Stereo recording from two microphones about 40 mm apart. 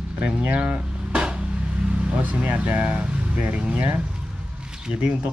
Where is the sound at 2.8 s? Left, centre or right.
Right.